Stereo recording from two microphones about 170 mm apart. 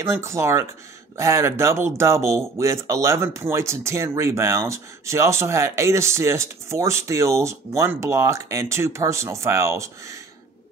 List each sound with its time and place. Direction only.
0.0 s speech: 15° right (ahead or behind)